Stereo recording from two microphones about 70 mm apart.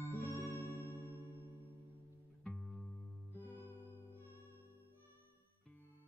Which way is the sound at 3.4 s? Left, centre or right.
Left.